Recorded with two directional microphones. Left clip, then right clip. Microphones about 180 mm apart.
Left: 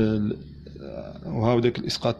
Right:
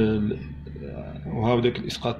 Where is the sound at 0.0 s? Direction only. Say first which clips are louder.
Right 1 dB; 60° left (ahead or behind).